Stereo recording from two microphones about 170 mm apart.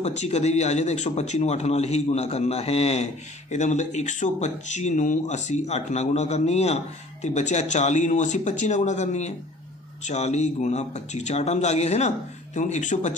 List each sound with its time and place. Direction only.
0.0 s speech: 40° left (ahead or behind)